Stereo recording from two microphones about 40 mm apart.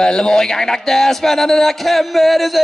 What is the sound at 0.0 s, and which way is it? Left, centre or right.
A man's voice, centre.